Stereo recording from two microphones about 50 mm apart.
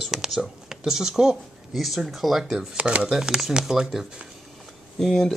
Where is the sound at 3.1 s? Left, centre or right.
Centre.